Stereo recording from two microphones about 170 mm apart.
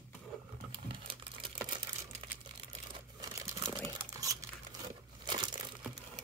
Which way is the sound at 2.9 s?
20° right (ahead or behind).